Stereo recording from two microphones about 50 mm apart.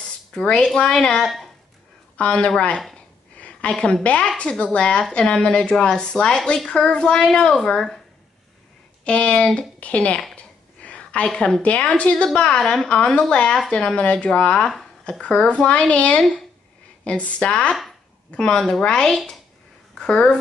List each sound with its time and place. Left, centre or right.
0.0 s a sound: centre
0.7 s a woman's voice: centre
2.1 s a woman's voice: left
3.3 s a sound: left
4.0 s a woman's voice: left
9.0 s a woman's voice: left
10.3 s a sound: left
11.3 s a woman's voice: left
16.2 s speech: centre
17.0 s a woman's voice: left
19.1 s speech: centre
20.0 s a woman's voice: centre